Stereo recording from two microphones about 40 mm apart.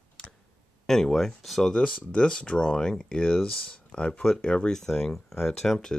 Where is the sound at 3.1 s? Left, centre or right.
Left.